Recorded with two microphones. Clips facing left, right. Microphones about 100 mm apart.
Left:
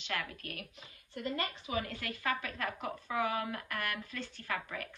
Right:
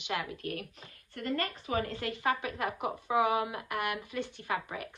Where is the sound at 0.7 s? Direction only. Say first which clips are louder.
Right 1 dB; 50° right (ahead or behind).